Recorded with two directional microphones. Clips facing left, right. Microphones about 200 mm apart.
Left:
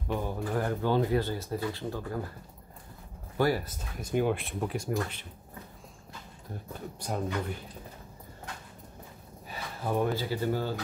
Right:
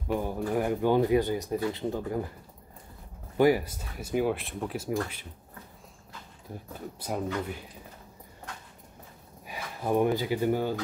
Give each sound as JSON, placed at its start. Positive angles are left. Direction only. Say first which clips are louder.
{"t": 0.1, "sound": "speech", "louder": "right 3 dB", "side_deg": -15}
{"t": 3.3, "sound": "speech", "louder": "right 5 dB", "side_deg": -15}
{"t": 7.0, "sound": "speech", "louder": "right 1 dB", "side_deg": -5}
{"t": 9.5, "sound": "speech", "louder": "right 4 dB", "side_deg": -15}